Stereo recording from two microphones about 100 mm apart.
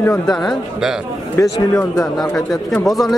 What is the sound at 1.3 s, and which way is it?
Speech, 30° left (ahead or behind).